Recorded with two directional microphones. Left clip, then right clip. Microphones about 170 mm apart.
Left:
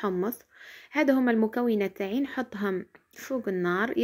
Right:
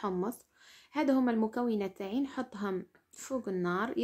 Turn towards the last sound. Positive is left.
turn(degrees=15)  # may be behind; listen again after turning